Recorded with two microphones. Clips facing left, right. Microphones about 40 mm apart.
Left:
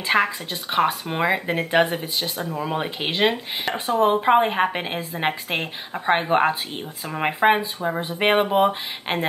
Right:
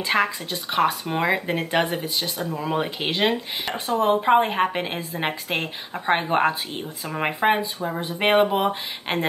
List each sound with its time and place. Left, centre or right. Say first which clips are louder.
0.0 s speech: left 1 dB; centre
8.2 s speech: left 1 dB; centre